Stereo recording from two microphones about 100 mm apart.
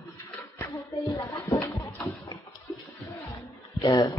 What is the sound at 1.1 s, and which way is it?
Speech, 30° left (ahead or behind).